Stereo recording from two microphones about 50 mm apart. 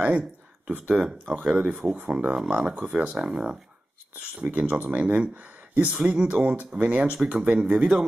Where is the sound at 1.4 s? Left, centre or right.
Centre.